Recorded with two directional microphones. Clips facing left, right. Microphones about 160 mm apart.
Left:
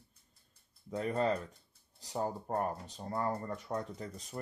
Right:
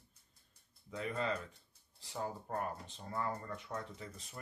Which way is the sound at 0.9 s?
40° left (ahead or behind).